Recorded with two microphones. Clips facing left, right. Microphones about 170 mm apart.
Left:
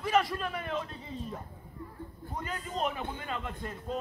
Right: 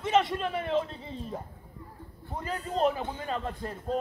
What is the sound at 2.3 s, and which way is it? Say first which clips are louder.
A man's voice: right 5 dB; 30° right (ahead or behind).